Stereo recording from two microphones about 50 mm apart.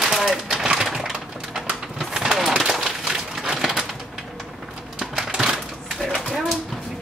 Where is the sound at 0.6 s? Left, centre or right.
Centre.